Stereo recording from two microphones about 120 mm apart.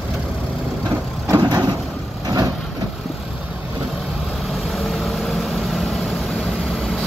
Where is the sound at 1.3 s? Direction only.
35° right (ahead or behind).